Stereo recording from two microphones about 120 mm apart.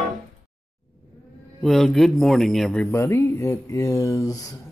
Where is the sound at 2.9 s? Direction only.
25° left (ahead or behind).